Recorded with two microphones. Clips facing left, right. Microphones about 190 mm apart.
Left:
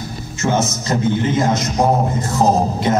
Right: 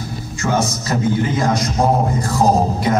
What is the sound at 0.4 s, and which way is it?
A man's voice, 25° left (ahead or behind).